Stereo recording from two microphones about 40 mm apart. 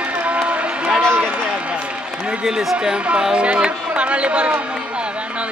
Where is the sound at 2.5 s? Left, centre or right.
Centre.